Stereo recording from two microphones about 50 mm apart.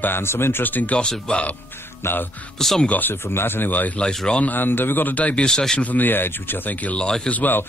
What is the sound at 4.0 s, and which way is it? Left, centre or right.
Speech, centre.